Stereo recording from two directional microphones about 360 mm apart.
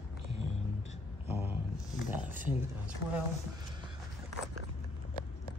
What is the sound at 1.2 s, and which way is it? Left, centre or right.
Speech, centre.